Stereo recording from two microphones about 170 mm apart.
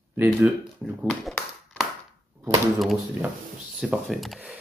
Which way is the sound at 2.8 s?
Centre (ahead or behind).